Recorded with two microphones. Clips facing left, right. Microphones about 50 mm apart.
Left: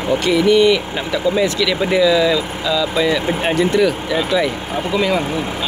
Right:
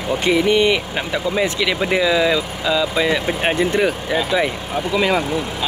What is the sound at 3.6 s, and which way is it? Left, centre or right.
Speech, right.